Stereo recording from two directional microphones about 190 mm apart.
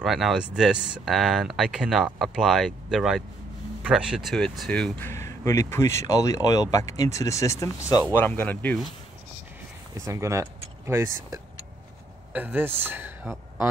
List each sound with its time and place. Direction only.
0.0 s speech: centre (ahead or behind)
10.0 s speech: 15° right (ahead or behind)